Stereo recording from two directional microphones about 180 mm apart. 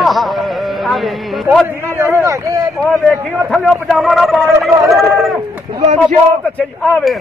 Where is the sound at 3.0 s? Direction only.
5° right (ahead or behind).